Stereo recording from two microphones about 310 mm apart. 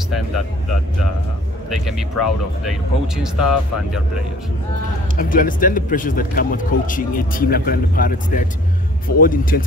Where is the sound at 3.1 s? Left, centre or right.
Centre.